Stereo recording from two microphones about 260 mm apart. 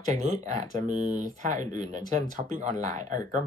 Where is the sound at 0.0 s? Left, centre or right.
Right.